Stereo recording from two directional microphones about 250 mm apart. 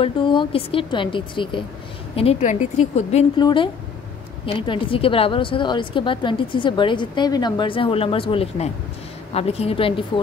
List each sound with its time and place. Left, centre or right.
0.0 s speech: centre